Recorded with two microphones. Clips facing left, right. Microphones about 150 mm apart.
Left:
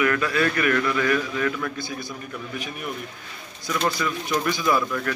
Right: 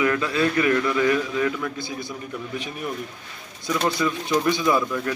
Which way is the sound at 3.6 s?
25° right (ahead or behind).